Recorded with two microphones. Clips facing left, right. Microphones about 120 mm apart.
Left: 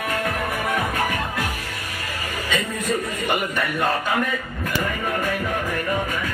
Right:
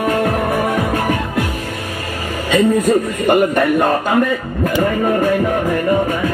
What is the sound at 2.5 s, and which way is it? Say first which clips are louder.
A man's voice: right 12 dB; 40° right (ahead or behind).